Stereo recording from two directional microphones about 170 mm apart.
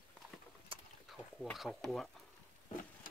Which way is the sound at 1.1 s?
Centre (ahead or behind).